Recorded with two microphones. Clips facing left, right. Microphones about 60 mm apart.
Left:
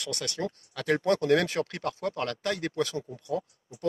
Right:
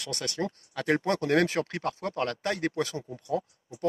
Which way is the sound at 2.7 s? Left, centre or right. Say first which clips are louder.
Left 1 dB; centre.